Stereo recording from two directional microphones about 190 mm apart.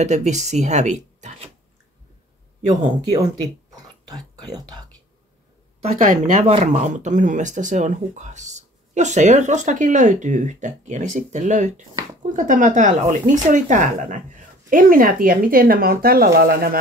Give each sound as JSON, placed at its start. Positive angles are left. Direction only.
{"t": 0.0, "sound": "speech", "side_deg": -40}
{"t": 4.6, "sound": "speech", "side_deg": -20}
{"t": 5.8, "sound": "speech", "side_deg": -40}